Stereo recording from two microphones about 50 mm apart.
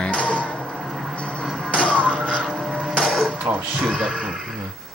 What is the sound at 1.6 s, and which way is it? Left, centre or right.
Music, left.